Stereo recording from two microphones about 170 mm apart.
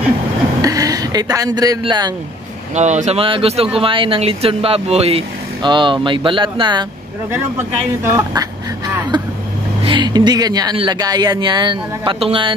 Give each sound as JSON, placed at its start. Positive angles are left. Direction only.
{"t": 0.6, "sound": "speech", "side_deg": -20}
{"t": 2.7, "sound": "speech", "side_deg": -45}
{"t": 7.3, "sound": "speech", "side_deg": -15}